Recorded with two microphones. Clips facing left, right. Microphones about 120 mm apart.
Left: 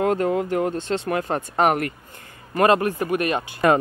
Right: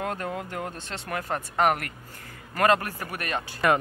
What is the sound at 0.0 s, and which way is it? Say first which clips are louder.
Speech: left 10 dB; 30° left (ahead or behind).